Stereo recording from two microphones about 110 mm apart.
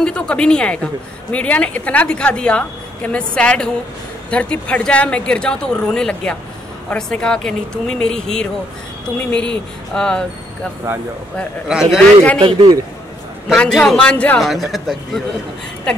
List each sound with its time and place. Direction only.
0.0 s a woman's voice: 10° left (ahead or behind)
11.6 s a man's voice: 5° right (ahead or behind)
12.4 s a man's voice: 60° right (ahead or behind)
13.6 s a woman's voice: 5° left (ahead or behind)
14.4 s speech: centre (ahead or behind)